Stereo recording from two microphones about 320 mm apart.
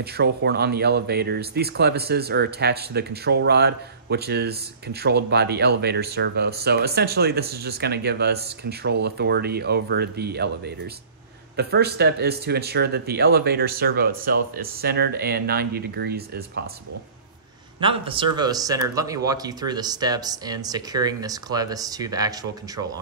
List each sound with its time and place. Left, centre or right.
0.0 s speech: right
17.7 s speech: centre